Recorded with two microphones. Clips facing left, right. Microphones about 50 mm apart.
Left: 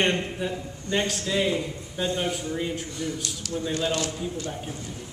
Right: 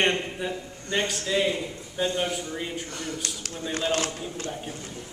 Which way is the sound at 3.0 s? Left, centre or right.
Right.